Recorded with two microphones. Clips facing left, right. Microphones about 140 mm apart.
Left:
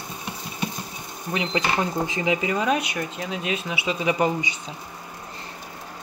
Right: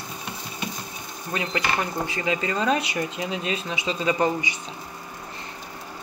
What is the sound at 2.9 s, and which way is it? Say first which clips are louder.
Speech: right 2 dB; 10° right (ahead or behind).